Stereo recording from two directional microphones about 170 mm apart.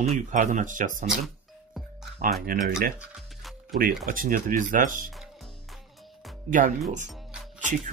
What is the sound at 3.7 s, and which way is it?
Speech, 55° right (ahead or behind).